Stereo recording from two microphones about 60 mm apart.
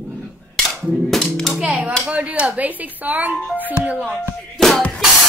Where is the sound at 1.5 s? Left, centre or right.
Centre.